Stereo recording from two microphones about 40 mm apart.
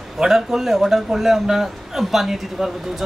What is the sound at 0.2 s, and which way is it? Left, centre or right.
A man's voice, centre.